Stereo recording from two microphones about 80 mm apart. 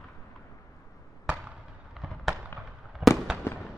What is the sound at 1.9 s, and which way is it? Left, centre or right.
Fireworks, centre.